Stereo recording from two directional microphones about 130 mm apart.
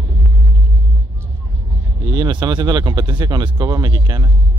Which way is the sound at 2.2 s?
35° right (ahead or behind).